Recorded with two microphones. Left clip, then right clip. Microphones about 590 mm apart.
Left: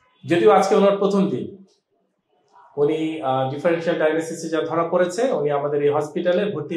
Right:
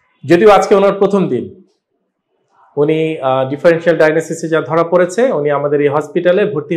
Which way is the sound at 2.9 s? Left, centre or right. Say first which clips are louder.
Right 9 dB; right.